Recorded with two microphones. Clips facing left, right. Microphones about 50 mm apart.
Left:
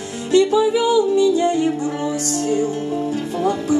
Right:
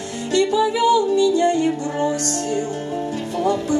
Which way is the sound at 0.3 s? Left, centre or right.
Centre.